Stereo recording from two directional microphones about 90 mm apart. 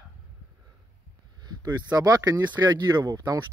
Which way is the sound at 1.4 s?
40° right (ahead or behind).